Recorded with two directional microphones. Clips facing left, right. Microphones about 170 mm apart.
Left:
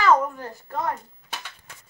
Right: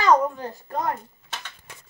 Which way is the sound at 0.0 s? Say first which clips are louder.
Right 1 dB; 20° right (ahead or behind).